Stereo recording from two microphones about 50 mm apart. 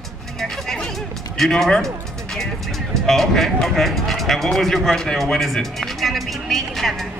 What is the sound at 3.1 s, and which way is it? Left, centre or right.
Speech, centre.